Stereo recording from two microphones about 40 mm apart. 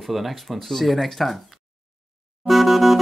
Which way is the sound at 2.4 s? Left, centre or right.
Centre.